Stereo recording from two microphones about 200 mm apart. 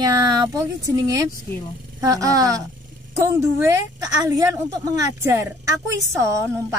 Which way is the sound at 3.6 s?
15° right (ahead or behind).